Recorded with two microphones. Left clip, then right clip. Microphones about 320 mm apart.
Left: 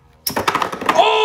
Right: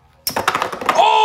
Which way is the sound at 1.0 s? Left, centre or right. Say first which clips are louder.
Right 2 dB; centre.